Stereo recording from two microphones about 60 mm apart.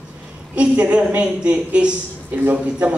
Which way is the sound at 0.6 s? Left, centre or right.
Centre.